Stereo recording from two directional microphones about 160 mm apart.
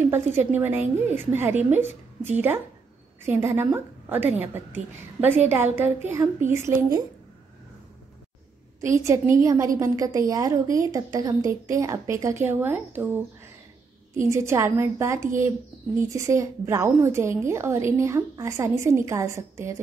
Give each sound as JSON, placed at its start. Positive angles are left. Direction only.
{"t": 0.0, "sound": "speech", "side_deg": -15}
{"t": 8.8, "sound": "a woman's voice", "side_deg": -20}
{"t": 14.2, "sound": "speech", "side_deg": -15}